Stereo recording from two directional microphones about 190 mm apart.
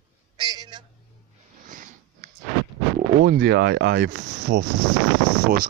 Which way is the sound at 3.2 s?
65° right (ahead or behind).